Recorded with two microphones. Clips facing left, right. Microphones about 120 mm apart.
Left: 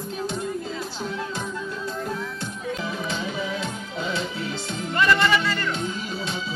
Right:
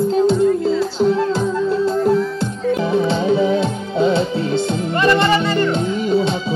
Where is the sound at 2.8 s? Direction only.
30° right (ahead or behind).